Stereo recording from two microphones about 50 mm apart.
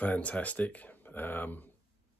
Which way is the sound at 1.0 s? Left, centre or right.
Left.